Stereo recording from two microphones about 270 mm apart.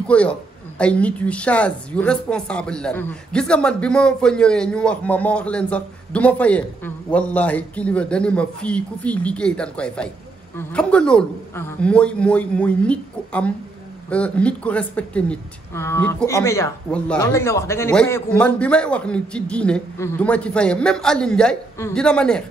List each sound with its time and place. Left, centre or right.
0.0 s speech: centre